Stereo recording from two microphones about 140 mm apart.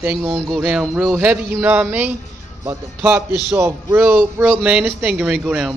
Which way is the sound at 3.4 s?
15° right (ahead or behind).